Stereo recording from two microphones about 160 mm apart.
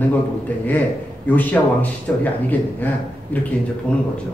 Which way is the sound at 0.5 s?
10° left (ahead or behind).